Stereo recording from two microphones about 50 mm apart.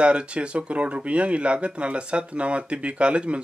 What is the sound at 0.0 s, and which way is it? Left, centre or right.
Speech, right.